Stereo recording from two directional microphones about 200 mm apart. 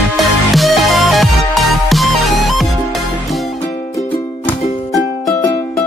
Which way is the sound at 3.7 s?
15° left (ahead or behind).